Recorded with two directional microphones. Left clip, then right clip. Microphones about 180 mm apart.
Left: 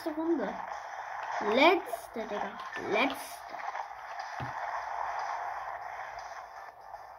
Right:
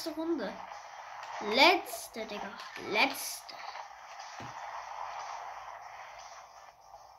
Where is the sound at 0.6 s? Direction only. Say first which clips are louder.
Left 6 dB; 35° left (ahead or behind).